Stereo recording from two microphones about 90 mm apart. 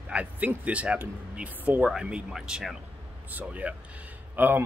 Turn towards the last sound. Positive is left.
turn(degrees=-20)  # may be behind; listen again after turning